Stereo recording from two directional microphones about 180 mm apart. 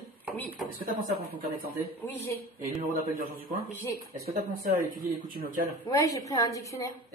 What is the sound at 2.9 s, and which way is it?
A man's voice, 55° right (ahead or behind).